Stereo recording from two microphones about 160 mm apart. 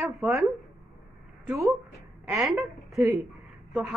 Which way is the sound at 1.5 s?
Centre (ahead or behind).